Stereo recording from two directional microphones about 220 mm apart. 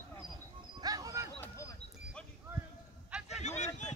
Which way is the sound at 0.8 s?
15° right (ahead or behind).